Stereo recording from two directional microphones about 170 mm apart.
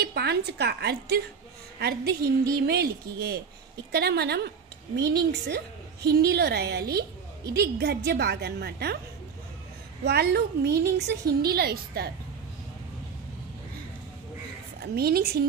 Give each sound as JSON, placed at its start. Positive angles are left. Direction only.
{"t": 0.0, "sound": "a woman's voice", "side_deg": -70}
{"t": 10.0, "sound": "a woman's voice", "side_deg": -70}
{"t": 15.0, "sound": "a woman's voice", "side_deg": -65}